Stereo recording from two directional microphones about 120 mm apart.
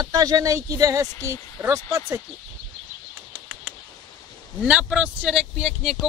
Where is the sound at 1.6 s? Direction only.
10° right (ahead or behind).